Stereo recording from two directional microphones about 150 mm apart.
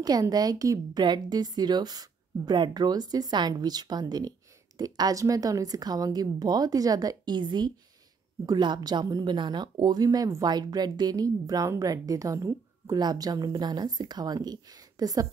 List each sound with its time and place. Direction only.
0.0 s speech: 25° right (ahead or behind)